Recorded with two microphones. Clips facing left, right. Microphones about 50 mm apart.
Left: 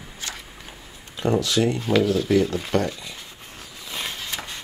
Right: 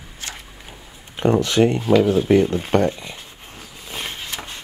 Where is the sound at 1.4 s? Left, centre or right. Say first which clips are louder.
Right 5 dB; right.